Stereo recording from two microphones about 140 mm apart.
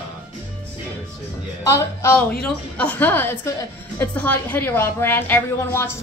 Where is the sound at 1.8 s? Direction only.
20° left (ahead or behind).